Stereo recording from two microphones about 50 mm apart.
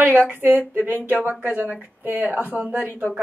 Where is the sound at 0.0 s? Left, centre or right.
Right.